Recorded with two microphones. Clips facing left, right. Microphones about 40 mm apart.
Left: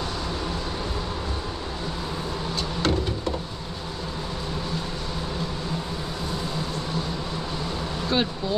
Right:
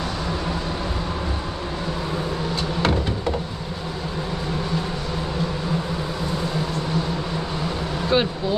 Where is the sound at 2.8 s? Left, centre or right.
Centre.